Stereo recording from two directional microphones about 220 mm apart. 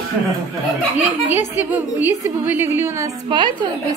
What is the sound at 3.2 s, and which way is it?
Speech, 20° right (ahead or behind).